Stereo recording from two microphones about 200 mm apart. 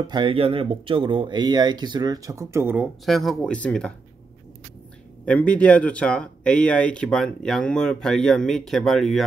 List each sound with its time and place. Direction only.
0.0 s speech: 25° right (ahead or behind); by 3.9 s 5° left (ahead or behind)
5.2 s speech: 5° left (ahead or behind)